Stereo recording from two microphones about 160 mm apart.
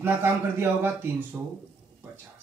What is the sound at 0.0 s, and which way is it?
A man's voice, 15° right (ahead or behind).